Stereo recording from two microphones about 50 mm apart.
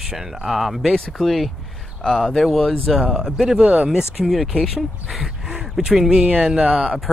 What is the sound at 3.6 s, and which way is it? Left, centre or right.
Speech, right.